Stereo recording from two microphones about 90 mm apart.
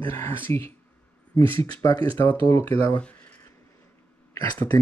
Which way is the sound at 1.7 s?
45° left (ahead or behind).